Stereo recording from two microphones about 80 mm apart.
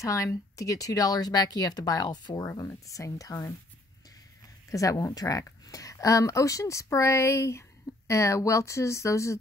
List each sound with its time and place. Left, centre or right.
0.0 s speech: left
2.7 s speech: left
4.6 s speech: left